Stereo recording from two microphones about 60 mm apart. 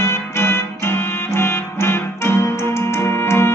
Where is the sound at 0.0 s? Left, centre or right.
Left.